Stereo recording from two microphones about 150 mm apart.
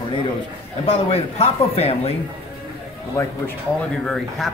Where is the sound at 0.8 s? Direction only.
45° left (ahead or behind).